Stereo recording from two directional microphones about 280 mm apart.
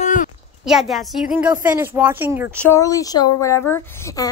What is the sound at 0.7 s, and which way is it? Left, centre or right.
Speech, centre.